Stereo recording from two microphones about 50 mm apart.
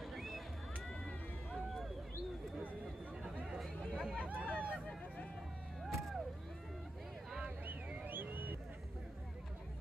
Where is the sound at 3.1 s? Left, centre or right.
Centre.